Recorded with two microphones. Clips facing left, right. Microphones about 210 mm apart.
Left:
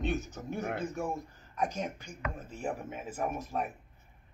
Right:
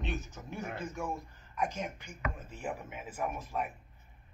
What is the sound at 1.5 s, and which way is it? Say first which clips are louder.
Speech: left 2 dB; 40° left (ahead or behind).